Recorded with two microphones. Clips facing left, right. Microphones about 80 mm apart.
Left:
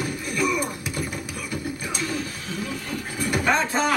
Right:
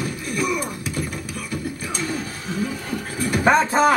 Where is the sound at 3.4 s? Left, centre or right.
Right.